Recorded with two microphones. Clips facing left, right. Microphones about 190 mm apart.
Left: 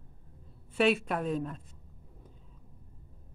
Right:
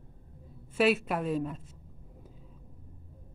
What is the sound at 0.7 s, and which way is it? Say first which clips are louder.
Speech: right 1 dB; 5° right (ahead or behind).